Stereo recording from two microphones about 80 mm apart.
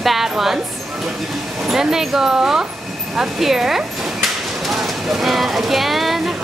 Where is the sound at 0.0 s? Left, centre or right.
Centre.